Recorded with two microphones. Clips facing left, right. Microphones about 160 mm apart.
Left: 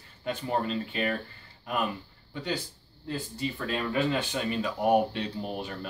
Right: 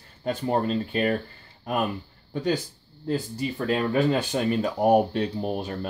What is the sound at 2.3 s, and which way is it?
Speech, 45° right (ahead or behind).